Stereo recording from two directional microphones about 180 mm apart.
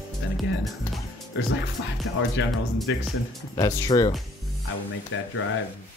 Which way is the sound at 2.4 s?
90° left.